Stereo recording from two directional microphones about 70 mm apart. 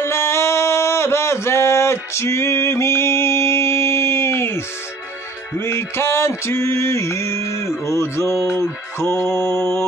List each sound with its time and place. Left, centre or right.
0.0 s a sound: left
5.6 s music: left
8.5 s mantra: left